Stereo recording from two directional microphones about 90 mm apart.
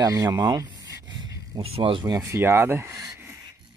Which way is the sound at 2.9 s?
40° right (ahead or behind).